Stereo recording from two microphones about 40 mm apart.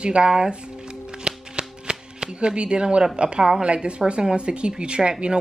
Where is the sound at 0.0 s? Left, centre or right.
Right.